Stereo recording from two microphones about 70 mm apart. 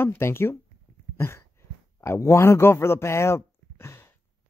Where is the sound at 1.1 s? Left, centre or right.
Left.